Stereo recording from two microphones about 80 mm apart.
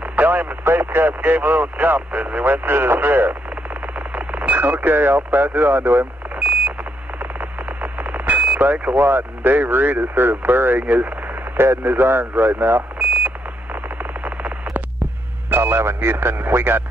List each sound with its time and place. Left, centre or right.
0.0 s speech: right
3.8 s radio: centre
5.3 s speech: right
6.4 s sidetone: right
9.0 s speech: right
14.2 s a sound: right
15.5 s speech: right